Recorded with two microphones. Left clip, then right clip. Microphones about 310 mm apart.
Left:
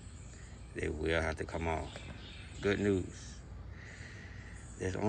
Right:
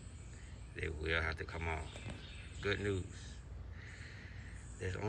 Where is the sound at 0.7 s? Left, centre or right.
Centre.